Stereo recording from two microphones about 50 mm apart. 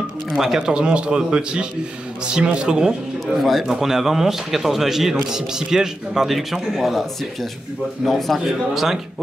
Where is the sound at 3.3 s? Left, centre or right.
Centre.